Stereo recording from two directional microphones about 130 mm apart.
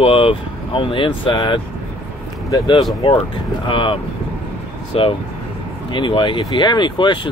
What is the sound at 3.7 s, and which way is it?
Speech, 40° left (ahead or behind).